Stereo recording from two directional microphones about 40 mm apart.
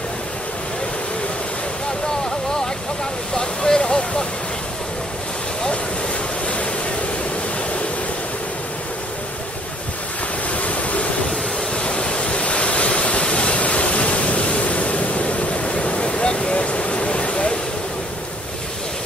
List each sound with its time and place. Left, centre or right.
3.3 s vehicle: centre
10.5 s waves: left
11.2 s waves: left